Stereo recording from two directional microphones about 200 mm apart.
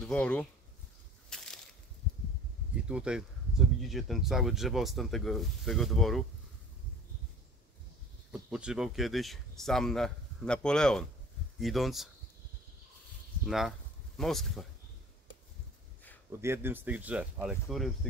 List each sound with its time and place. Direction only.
0.0 s speech: 5° left (ahead or behind)
1.3 s crushing: centre (ahead or behind)
2.7 s speech: 5° right (ahead or behind)
8.3 s speech: 5° right (ahead or behind)
13.5 s speech: centre (ahead or behind)
16.3 s speech: 15° right (ahead or behind)